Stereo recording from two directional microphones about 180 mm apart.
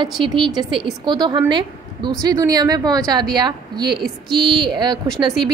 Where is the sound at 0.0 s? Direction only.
25° right (ahead or behind).